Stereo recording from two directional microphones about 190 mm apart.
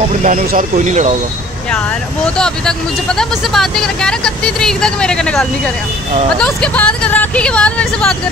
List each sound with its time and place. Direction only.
0.2 s speech: 45° right (ahead or behind)
2.3 s speech: 5° left (ahead or behind)